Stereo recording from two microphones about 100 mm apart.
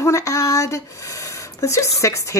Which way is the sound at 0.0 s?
30° left (ahead or behind).